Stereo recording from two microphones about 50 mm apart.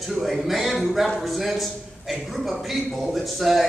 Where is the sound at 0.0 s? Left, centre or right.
Centre.